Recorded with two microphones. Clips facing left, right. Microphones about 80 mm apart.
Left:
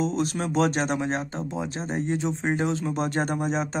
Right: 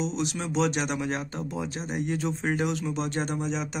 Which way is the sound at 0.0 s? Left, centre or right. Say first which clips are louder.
Left 4 dB; left.